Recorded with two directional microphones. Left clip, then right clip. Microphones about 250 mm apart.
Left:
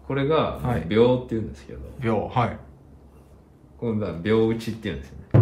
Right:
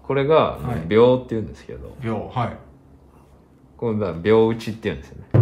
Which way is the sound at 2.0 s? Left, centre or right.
Centre.